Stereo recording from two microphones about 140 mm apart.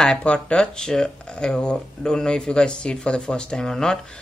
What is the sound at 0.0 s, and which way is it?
Speech, 5° left (ahead or behind).